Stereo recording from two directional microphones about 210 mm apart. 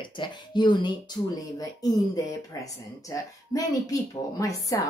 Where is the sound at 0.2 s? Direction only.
20° left (ahead or behind).